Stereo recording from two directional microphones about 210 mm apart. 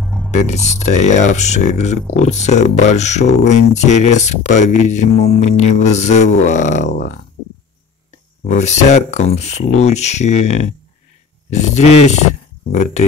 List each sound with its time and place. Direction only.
0.0 s music: centre (ahead or behind)
0.3 s speech: 35° left (ahead or behind)
8.5 s speech: 35° left (ahead or behind)